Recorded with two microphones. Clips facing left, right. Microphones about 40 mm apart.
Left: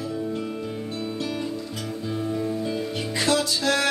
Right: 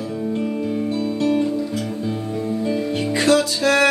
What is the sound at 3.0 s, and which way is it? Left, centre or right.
Music, right.